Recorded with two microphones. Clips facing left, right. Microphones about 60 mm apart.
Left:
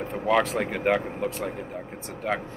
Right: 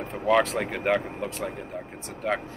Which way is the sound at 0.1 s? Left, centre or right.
Centre.